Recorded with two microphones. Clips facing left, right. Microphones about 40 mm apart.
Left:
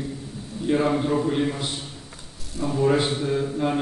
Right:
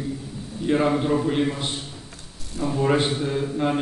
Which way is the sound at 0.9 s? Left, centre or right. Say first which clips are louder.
Right 1 dB; centre.